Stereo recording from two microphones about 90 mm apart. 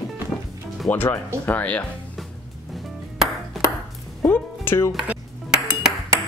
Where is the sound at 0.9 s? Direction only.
20° left (ahead or behind).